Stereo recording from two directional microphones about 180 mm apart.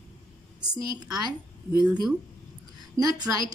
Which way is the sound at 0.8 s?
20° right (ahead or behind).